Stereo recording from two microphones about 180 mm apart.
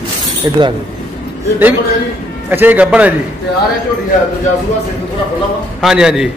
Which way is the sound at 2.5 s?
10° right (ahead or behind).